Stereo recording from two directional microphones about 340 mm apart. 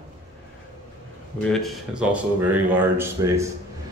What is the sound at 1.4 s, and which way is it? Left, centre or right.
A man's voice, centre.